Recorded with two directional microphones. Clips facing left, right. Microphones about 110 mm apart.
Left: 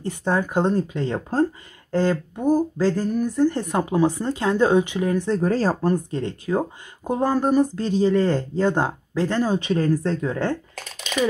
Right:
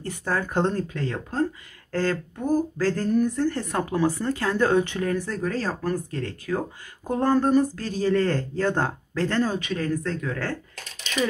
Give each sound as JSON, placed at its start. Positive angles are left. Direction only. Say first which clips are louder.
{"t": 0.0, "sound": "speech", "louder": "left 4 dB", "side_deg": 20}
{"t": 2.0, "sound": "speech", "louder": "left 4 dB", "side_deg": 15}
{"t": 5.4, "sound": "speech", "louder": "left 6 dB", "side_deg": 30}
{"t": 7.1, "sound": "speech", "louder": "left 1 dB", "side_deg": 10}
{"t": 9.6, "sound": "speech", "louder": "left 6 dB", "side_deg": 30}